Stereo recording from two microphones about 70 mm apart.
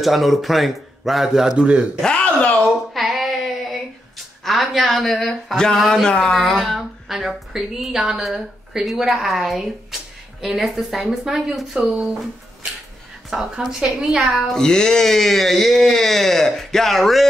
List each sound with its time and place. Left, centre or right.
0.0 s speech: centre
2.0 s a sound: centre
2.6 s a sound: centre
4.5 s speech: centre
13.3 s speech: centre
14.5 s speech: centre